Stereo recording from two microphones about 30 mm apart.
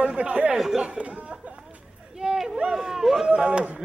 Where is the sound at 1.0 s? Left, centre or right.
Right.